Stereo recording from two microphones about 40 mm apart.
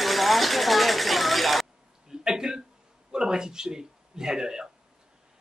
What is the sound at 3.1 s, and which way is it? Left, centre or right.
Speech, centre.